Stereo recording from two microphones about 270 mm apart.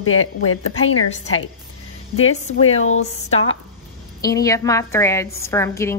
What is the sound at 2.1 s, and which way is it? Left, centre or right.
A woman's voice, left.